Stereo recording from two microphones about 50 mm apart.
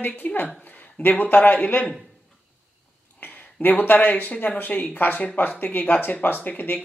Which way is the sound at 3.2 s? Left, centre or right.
Left.